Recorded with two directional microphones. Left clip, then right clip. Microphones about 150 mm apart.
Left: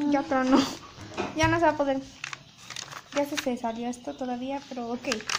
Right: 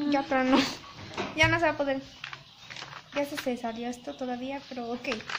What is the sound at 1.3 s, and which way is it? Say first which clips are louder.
Speech: left 1 dB; 15° left (ahead or behind).